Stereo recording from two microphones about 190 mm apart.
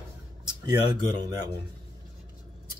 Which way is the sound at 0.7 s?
20° right (ahead or behind).